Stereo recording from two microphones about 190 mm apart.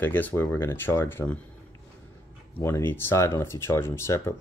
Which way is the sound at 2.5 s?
10° left (ahead or behind).